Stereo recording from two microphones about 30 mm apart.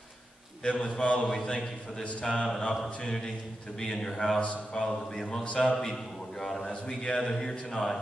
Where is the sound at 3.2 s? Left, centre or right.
Left.